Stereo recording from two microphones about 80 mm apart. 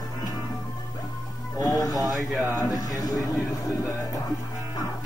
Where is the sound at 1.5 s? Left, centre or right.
Left.